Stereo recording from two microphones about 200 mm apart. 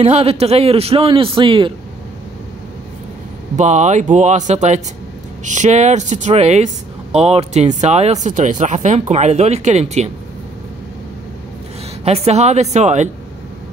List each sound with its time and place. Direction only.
0.0 s a man's voice: 30° right (ahead or behind)
3.5 s speech: 35° right (ahead or behind)
12.0 s speech: 30° right (ahead or behind)